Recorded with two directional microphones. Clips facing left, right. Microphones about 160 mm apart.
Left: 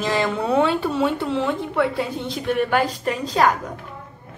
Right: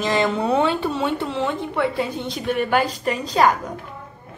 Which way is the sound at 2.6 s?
5° right (ahead or behind).